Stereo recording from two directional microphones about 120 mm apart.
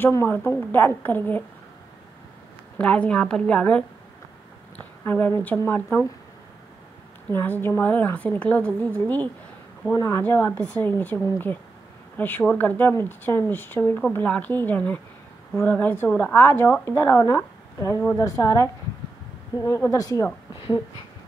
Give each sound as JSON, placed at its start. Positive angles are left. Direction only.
{"t": 0.0, "sound": "a woman's voice", "side_deg": 20}
{"t": 2.8, "sound": "a woman's voice", "side_deg": 10}
{"t": 7.2, "sound": "a woman's voice", "side_deg": 15}
{"t": 9.9, "sound": "a woman's voice", "side_deg": 25}
{"t": 19.5, "sound": "a woman's voice", "side_deg": 40}